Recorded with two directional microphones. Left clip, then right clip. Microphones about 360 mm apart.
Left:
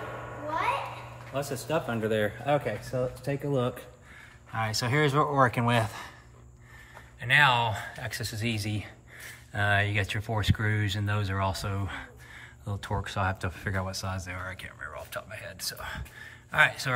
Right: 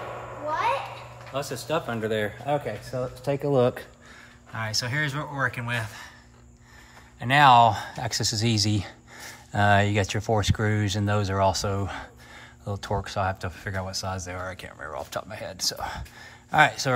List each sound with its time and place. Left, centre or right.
1.3 s speech: centre
3.3 s speech: centre
4.5 s speech: centre
7.2 s speech: centre